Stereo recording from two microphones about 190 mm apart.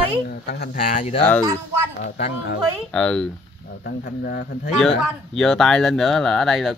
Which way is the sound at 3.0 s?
5° left (ahead or behind).